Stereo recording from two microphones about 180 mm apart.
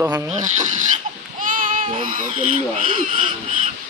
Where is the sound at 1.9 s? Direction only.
45° right (ahead or behind).